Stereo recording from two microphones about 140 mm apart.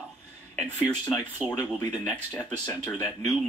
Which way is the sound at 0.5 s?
10° left (ahead or behind).